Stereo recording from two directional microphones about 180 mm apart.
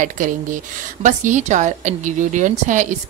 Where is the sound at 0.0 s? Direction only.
45° right (ahead or behind).